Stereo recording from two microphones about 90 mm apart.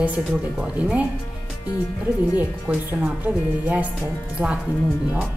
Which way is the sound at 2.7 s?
15° right (ahead or behind).